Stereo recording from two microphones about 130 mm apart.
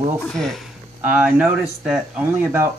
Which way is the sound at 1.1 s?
15° right (ahead or behind).